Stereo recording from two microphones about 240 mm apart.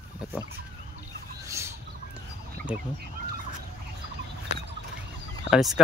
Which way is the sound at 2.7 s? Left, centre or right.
Centre.